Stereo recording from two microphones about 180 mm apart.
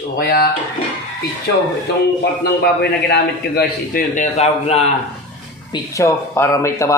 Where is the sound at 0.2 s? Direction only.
55° left (ahead or behind).